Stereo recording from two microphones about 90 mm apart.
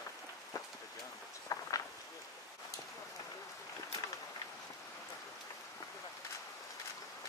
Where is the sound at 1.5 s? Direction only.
45° left (ahead or behind).